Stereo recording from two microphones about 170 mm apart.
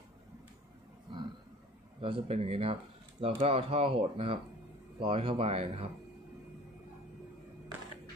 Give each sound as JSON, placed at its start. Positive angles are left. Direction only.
{"t": 2.0, "sound": "speech", "side_deg": -35}